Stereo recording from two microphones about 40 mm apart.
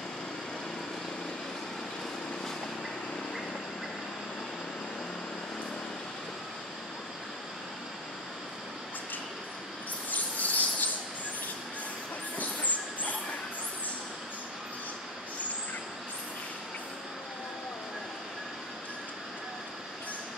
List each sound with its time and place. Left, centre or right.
10.1 s mouse: left
12.4 s train: left